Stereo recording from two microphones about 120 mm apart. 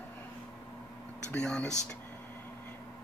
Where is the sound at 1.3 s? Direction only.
5° left (ahead or behind).